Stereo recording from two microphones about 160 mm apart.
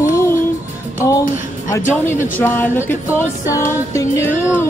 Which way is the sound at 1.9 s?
15° left (ahead or behind).